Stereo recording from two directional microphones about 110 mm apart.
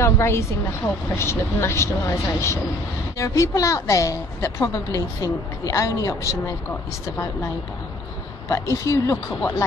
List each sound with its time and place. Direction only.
0.0 s a woman's voice: 25° left (ahead or behind)
8.5 s a woman's voice: 30° left (ahead or behind)